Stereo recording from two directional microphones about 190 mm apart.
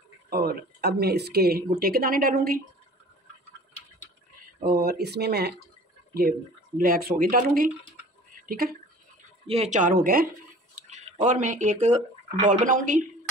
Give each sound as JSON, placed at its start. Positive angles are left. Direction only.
{"t": 0.3, "sound": "speech", "side_deg": -55}
{"t": 4.6, "sound": "speech", "side_deg": -50}
{"t": 6.8, "sound": "speech", "side_deg": -50}
{"t": 9.5, "sound": "speech", "side_deg": -35}